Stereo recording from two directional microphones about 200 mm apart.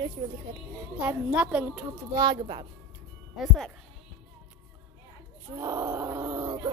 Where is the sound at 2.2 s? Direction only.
20° right (ahead or behind).